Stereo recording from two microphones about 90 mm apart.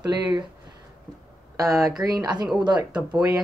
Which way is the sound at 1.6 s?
40° right (ahead or behind).